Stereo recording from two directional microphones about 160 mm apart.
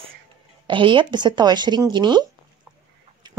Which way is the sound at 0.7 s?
30° right (ahead or behind).